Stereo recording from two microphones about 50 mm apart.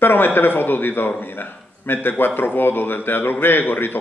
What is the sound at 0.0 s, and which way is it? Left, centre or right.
A man's voice, left.